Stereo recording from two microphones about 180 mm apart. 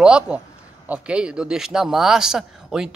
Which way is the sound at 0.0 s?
5° right (ahead or behind).